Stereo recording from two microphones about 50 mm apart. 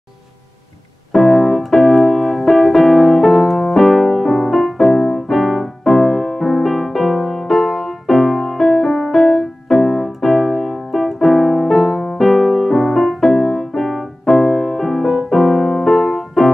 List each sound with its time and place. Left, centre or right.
1.1 s keyboard: centre